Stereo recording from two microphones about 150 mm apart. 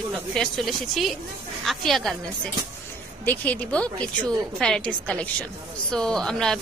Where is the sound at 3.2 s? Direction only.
10° left (ahead or behind).